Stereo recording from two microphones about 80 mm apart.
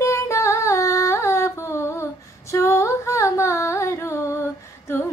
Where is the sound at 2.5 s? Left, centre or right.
Left.